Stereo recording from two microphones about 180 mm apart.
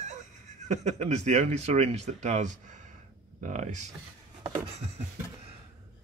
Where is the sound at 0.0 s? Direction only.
40° right (ahead or behind).